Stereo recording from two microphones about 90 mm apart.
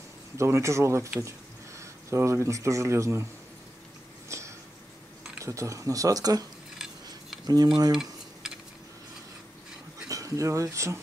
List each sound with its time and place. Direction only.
0.4 s speech: 35° right (ahead or behind)
4.3 s a sound: 35° right (ahead or behind)
5.4 s speech: 35° right (ahead or behind)
7.4 s speech: 50° right (ahead or behind)
7.9 s tick-tock: 5° right (ahead or behind)
10.0 s speech: 40° right (ahead or behind)